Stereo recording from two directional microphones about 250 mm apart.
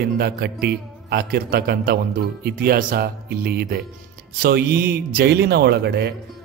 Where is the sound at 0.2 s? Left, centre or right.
Right.